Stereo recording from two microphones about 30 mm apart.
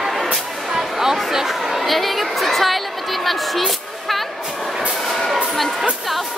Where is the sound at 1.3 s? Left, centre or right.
Centre.